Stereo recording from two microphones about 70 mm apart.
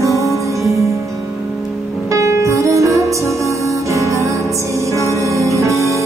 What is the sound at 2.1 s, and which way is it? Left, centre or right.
Music, right.